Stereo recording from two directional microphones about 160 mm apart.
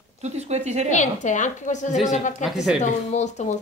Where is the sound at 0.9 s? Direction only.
50° left (ahead or behind).